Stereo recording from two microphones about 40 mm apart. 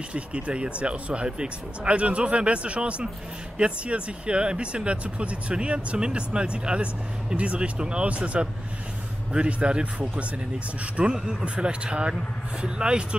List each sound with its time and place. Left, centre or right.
0.1 s speech: right